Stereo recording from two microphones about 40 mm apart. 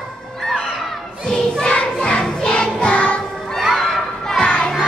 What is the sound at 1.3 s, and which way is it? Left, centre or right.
Music, centre.